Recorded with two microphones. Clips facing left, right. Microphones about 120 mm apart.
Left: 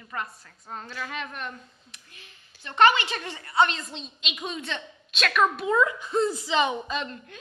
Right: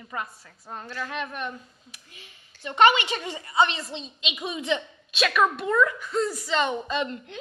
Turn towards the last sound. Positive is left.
turn(degrees=5)  # may be behind; listen again after turning